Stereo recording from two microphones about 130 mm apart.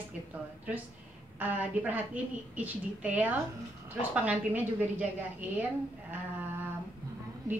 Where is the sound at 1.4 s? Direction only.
15° right (ahead or behind).